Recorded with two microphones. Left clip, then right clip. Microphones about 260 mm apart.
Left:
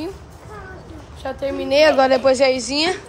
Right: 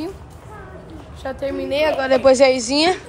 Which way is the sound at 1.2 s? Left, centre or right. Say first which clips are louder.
Even; centre.